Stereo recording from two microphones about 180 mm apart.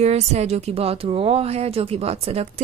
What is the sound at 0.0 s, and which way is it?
A woman's voice, 35° right (ahead or behind).